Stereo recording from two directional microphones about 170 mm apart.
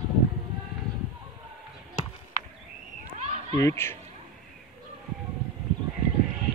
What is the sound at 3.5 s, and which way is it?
Speech, 15° left (ahead or behind).